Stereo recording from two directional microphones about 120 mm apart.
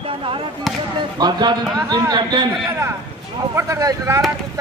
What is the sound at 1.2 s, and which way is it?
A man's voice, 35° right (ahead or behind).